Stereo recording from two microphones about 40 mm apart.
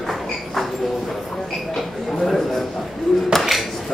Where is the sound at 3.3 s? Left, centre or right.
Centre.